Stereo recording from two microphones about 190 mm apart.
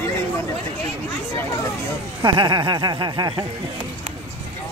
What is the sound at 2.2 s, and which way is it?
Speech, 20° right (ahead or behind).